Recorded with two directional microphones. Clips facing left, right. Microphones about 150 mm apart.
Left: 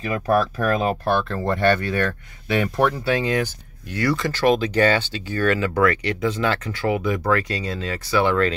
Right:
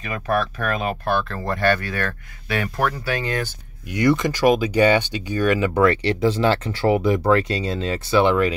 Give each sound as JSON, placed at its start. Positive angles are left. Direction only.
{"t": 0.0, "sound": "speech", "side_deg": 30}
{"t": 3.9, "sound": "speech", "side_deg": -20}
{"t": 5.8, "sound": "speech", "side_deg": -30}